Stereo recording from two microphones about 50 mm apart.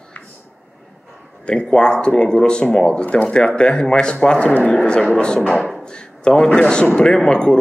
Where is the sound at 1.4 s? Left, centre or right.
Centre.